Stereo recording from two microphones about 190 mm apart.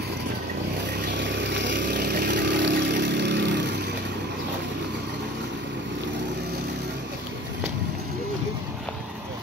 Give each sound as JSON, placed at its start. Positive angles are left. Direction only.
{"t": 1.0, "sound": "vehicle", "side_deg": -65}
{"t": 1.8, "sound": "vehicle", "side_deg": -55}